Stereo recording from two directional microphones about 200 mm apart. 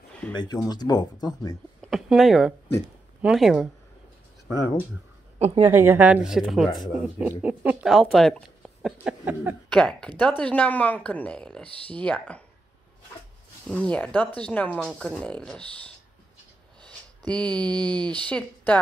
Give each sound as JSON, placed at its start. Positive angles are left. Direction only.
{"t": 0.3, "sound": "speech", "side_deg": 20}
{"t": 1.8, "sound": "a sound", "side_deg": 0}
{"t": 3.2, "sound": "speech", "side_deg": 0}
{"t": 5.6, "sound": "speech", "side_deg": -10}
{"t": 9.7, "sound": "speech", "side_deg": 5}
{"t": 13.7, "sound": "speech", "side_deg": 5}
{"t": 16.8, "sound": "speech", "side_deg": 5}